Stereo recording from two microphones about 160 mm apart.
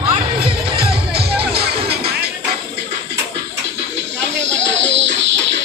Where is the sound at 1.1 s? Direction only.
80° right.